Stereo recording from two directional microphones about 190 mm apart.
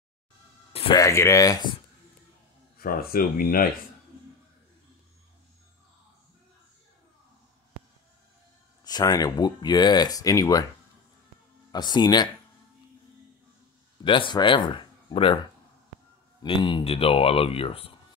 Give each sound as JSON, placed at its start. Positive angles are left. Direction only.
{"t": 0.9, "sound": "speech", "side_deg": 15}
{"t": 2.8, "sound": "speech", "side_deg": 50}
{"t": 8.8, "sound": "speech", "side_deg": 20}
{"t": 11.7, "sound": "speech", "side_deg": 20}
{"t": 14.0, "sound": "speech", "side_deg": 25}
{"t": 16.4, "sound": "speech", "side_deg": 25}